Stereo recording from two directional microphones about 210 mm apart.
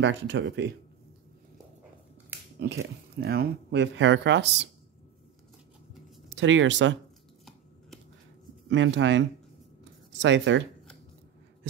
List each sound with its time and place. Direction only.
0.0 s speech: 60° right (ahead or behind)
2.6 s speech: 50° right (ahead or behind)
6.3 s speech: 65° right (ahead or behind)
8.6 s speech: 65° right (ahead or behind)
10.2 s speech: 60° right (ahead or behind)